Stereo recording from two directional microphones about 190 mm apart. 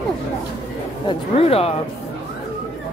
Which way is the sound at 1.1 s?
30° left (ahead or behind).